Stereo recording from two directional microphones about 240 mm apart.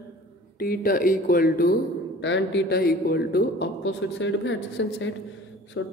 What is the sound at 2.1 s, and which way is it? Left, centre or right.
Speech, left.